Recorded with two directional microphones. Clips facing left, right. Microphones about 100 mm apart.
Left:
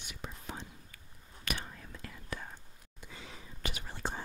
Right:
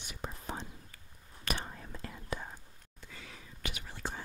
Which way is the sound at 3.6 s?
35° left (ahead or behind).